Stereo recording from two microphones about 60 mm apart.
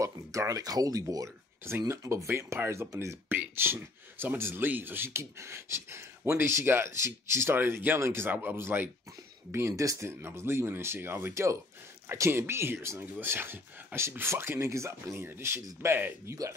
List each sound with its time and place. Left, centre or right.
0.0 s speech: right
1.8 s speech: right
2.9 s speech: right
3.3 s speech: right
9.5 s speech: right
9.9 s speech: right
15.8 s speech: right